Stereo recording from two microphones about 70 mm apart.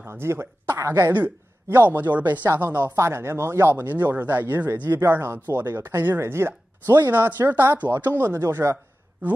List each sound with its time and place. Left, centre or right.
0.0 s speech: right
3.7 s speech: right